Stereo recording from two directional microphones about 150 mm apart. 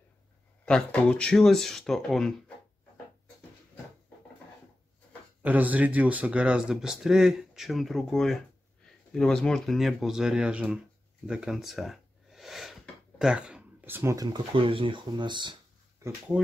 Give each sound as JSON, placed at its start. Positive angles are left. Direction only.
{"t": 0.7, "sound": "speech", "side_deg": 5}
{"t": 5.4, "sound": "speech", "side_deg": -10}
{"t": 11.2, "sound": "a sound", "side_deg": -5}
{"t": 13.2, "sound": "speech", "side_deg": -5}